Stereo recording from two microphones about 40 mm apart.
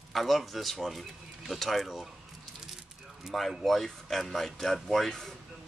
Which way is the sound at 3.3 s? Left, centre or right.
Centre.